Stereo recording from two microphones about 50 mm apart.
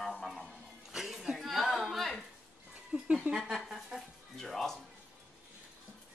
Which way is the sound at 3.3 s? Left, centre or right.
Centre.